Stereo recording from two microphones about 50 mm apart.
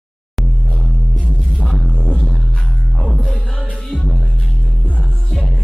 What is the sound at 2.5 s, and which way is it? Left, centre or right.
Music, left.